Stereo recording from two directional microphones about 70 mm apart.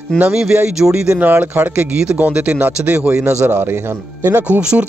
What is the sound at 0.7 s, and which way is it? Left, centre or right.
Speech, centre.